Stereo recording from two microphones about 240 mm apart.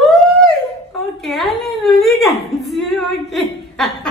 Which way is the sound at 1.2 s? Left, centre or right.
Centre.